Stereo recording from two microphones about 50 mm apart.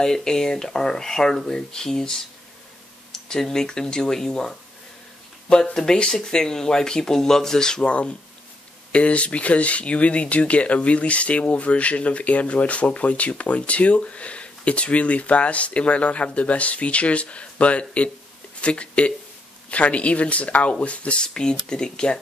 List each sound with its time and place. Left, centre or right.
0.0 s speech: centre